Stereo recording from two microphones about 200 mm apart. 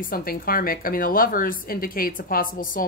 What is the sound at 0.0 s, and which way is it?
A woman's voice, 45° left (ahead or behind).